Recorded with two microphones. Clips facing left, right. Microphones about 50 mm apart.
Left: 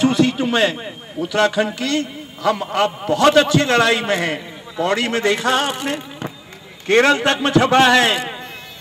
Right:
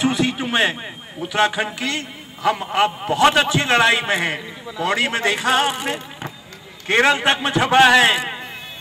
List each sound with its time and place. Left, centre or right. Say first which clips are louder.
0.0 s a man's voice: left 4 dB; right